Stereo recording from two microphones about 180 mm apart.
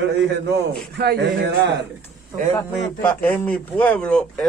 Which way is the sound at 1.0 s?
65° right (ahead or behind).